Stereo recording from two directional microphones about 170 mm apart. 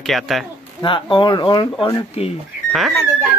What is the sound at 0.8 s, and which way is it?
A woman's voice, 30° left (ahead or behind).